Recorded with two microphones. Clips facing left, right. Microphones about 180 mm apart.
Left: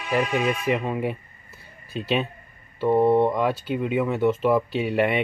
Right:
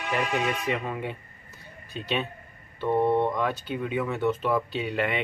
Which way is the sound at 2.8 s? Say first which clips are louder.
Left 5 dB; 30° left (ahead or behind).